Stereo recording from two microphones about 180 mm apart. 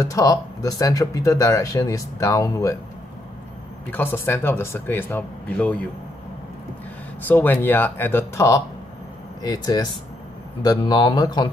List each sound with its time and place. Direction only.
0.0 s speech: 20° left (ahead or behind)
3.9 s speech: 10° left (ahead or behind)
7.2 s speech: 10° left (ahead or behind)